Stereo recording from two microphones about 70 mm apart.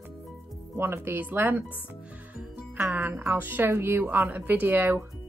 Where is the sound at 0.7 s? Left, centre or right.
Right.